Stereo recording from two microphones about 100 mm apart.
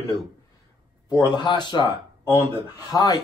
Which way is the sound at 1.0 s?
45° left (ahead or behind).